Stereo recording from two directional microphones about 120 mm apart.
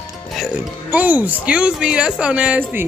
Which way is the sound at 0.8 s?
15° right (ahead or behind).